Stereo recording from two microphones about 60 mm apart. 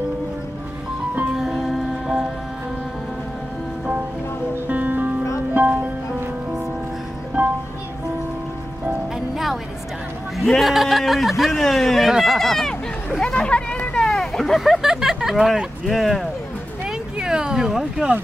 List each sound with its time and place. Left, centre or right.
1.3 s music: centre
4.6 s music: right
10.3 s speech: centre
12.1 s chatter: centre
14.0 s vehicle: centre
16.8 s a sound: centre